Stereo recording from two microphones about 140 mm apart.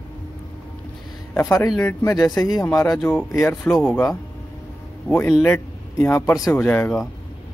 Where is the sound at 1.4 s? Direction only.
20° left (ahead or behind).